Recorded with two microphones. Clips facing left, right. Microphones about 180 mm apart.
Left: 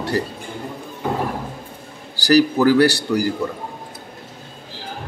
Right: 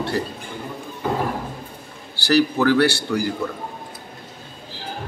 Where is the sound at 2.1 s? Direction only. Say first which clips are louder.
Left 3 dB; 40° left (ahead or behind).